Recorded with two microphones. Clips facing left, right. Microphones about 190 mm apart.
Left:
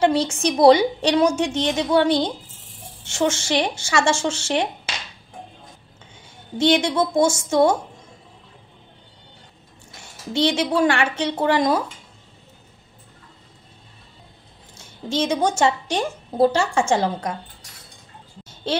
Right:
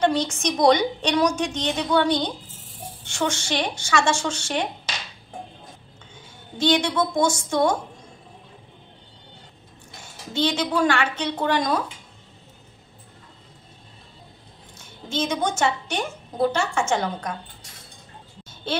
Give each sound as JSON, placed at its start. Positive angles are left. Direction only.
{"t": 0.0, "sound": "a woman's voice", "side_deg": 30}
{"t": 6.7, "sound": "a woman's voice", "side_deg": 25}
{"t": 10.5, "sound": "a woman's voice", "side_deg": 25}
{"t": 15.0, "sound": "a woman's voice", "side_deg": 30}